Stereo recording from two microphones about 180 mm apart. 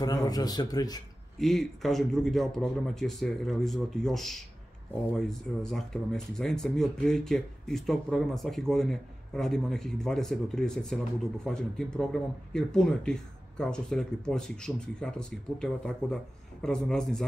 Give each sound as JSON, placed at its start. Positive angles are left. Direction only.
{"t": 0.0, "sound": "speech", "side_deg": 20}
{"t": 1.4, "sound": "speech", "side_deg": 0}